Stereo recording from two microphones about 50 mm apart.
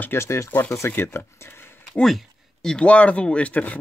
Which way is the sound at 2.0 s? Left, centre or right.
Centre.